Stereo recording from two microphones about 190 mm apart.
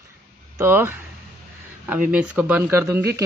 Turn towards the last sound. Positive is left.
turn(degrees=-15)  # may be behind; listen again after turning